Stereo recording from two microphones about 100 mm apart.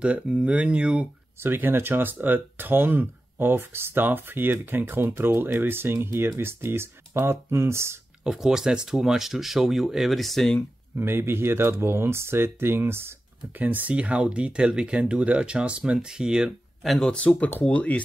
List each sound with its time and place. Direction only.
0.0 s speech: 10° right (ahead or behind)
1.4 s speech: 20° right (ahead or behind)
8.2 s speech: 5° right (ahead or behind)
11.0 s speech: 20° right (ahead or behind); by 18.0 s 15° left (ahead or behind)